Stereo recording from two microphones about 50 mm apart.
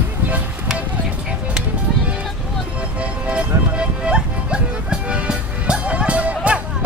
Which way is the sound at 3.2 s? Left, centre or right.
Right.